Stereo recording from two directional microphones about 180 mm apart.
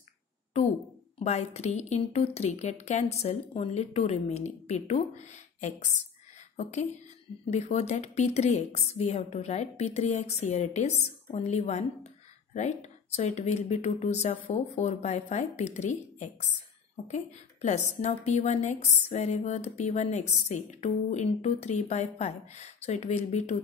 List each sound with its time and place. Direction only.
1.2 s a woman's voice: 35° left (ahead or behind)
6.5 s a woman's voice: 40° left (ahead or behind)